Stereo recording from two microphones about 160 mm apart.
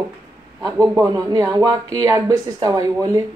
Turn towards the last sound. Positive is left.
turn(degrees=-20)  # may be behind; listen again after turning